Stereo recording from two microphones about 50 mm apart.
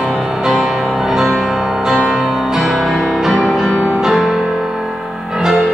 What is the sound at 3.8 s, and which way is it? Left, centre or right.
Music, centre.